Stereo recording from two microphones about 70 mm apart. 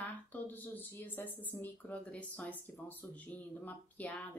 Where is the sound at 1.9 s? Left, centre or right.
Left.